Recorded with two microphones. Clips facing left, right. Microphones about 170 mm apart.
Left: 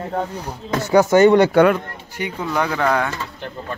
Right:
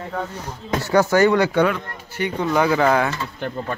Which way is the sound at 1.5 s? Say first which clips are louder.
Left 5 dB; 50° left (ahead or behind).